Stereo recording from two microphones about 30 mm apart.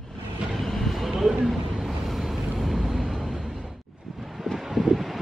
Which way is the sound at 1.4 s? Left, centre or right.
Centre.